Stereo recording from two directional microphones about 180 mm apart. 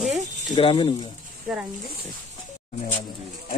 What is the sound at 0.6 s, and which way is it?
Speech, 30° left (ahead or behind).